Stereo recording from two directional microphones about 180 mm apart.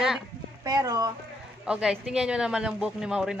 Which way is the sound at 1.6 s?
5° right (ahead or behind).